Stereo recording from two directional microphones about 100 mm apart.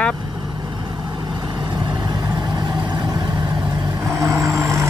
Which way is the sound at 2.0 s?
45° right (ahead or behind).